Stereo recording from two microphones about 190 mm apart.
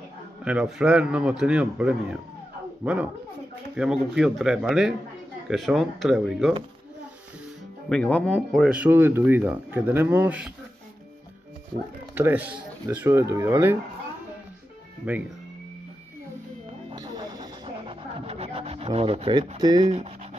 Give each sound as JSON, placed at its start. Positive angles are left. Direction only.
{"t": 0.5, "sound": "speech", "side_deg": -5}
{"t": 7.9, "sound": "speech", "side_deg": 5}
{"t": 12.2, "sound": "speech", "side_deg": -10}
{"t": 15.0, "sound": "speech", "side_deg": -5}
{"t": 16.9, "sound": "music", "side_deg": -20}
{"t": 19.8, "sound": "speech", "side_deg": -35}